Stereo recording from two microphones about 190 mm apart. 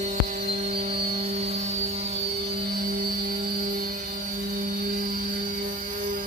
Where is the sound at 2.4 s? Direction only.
55° right (ahead or behind).